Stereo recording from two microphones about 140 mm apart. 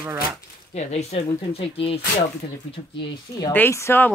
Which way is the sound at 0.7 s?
50° left (ahead or behind).